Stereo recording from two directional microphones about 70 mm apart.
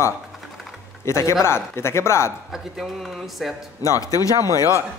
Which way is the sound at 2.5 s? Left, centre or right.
Centre.